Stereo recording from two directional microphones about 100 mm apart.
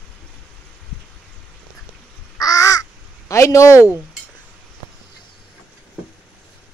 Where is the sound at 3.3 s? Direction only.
30° left (ahead or behind).